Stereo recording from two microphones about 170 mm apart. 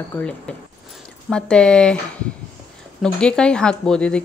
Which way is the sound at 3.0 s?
5° left (ahead or behind).